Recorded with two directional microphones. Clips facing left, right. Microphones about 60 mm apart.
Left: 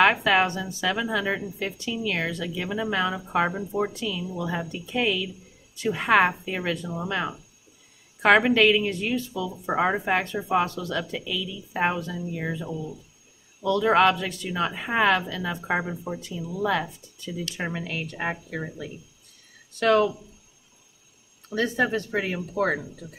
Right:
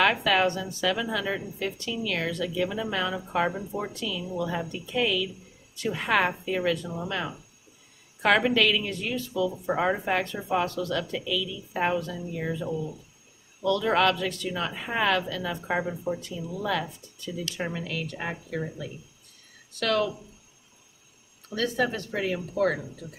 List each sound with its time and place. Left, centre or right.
0.0 s a woman's voice: centre
13.7 s speech: centre
19.8 s speech: left
21.5 s speech: left